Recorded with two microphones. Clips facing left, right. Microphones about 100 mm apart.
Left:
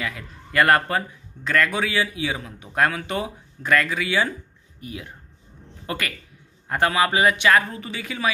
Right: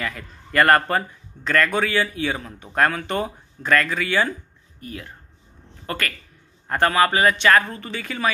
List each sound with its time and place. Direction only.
0.0 s a man's voice: 5° left (ahead or behind)